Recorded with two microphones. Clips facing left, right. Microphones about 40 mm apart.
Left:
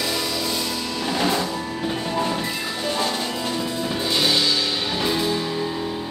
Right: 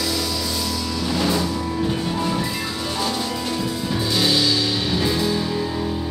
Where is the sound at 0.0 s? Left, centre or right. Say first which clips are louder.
Even; left.